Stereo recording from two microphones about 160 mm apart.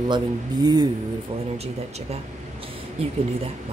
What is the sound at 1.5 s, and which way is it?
Speech, 40° right (ahead or behind).